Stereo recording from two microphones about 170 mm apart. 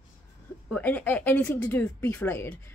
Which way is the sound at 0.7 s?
10° left (ahead or behind).